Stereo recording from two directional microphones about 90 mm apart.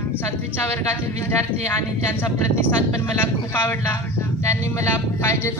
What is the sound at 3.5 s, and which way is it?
Speech, 25° left (ahead or behind).